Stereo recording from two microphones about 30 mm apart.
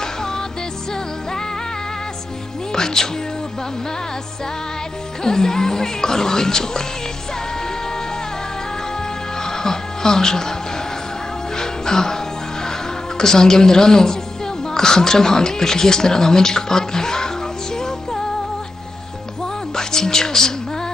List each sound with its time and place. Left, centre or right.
0.0 s music: centre
2.7 s speech: centre
5.2 s speech: left
9.4 s music: left
11.5 s music: left
13.2 s speech: centre
17.7 s music: centre
19.7 s a sound: centre